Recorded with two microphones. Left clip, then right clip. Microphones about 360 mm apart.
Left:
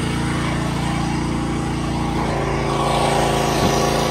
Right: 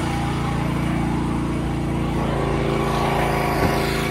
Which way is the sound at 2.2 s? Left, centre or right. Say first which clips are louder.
Even; left.